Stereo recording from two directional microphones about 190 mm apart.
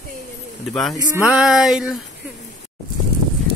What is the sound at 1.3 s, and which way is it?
Speech, 5° right (ahead or behind).